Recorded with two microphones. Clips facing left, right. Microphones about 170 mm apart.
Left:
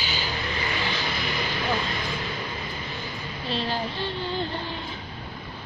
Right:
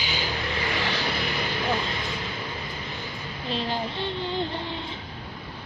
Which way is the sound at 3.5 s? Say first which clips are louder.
Even; 15° right (ahead or behind).